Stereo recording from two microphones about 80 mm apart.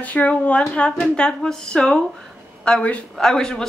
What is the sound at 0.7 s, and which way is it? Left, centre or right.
A woman's voice, centre.